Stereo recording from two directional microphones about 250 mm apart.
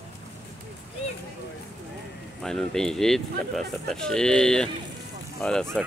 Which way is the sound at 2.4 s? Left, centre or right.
Centre.